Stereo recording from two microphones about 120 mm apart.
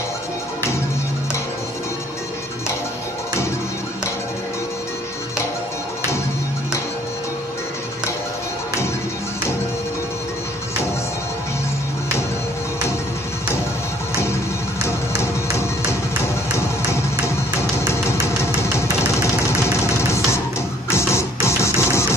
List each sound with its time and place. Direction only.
18.2 s music: 25° left (ahead or behind)
20.9 s music: 20° left (ahead or behind)